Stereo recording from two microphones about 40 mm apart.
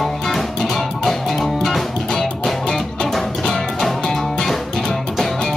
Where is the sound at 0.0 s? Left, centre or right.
Centre.